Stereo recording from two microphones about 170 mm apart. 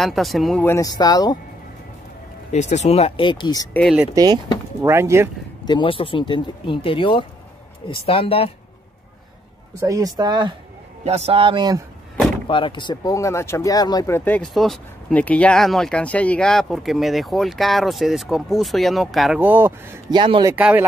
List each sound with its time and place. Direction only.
0.0 s speech: centre (ahead or behind)
0.7 s speech: 20° left (ahead or behind)
2.5 s speech: 40° left (ahead or behind); by 3.6 s 25° left (ahead or behind)
4.1 s speech: 20° right (ahead or behind)
5.7 s speech: 30° left (ahead or behind)
9.8 s speech: 20° right (ahead or behind)
11.1 s a man's voice: 35° right (ahead or behind)
12.4 s speech: 30° left (ahead or behind); by 19.7 s 10° right (ahead or behind)
20.1 s speech: 30° right (ahead or behind)
20.5 s speech: 10° right (ahead or behind)